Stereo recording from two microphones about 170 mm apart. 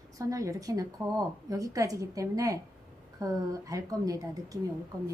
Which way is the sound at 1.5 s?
20° right (ahead or behind).